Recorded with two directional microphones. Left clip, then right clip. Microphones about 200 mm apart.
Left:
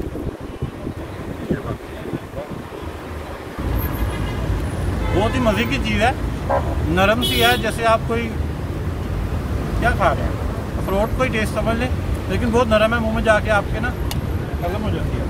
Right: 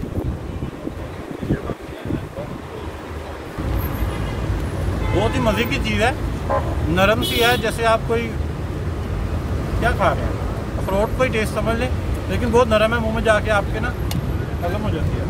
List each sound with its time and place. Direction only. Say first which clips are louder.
5.2 s speech: left 1 dB; 15° right (ahead or behind)
9.8 s speech: left 1 dB; 15° right (ahead or behind)